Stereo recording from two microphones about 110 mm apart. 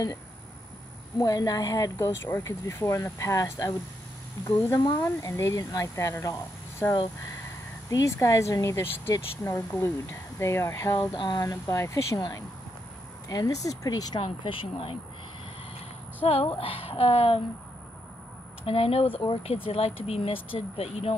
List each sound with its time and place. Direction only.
1.1 s speech: 35° left (ahead or behind)
11.1 s speech: 40° left (ahead or behind)
11.6 s speech: 25° left (ahead or behind)
14.2 s speech: 55° left (ahead or behind)
16.3 s speech: 60° left (ahead or behind)
18.7 s speech: 60° left (ahead or behind)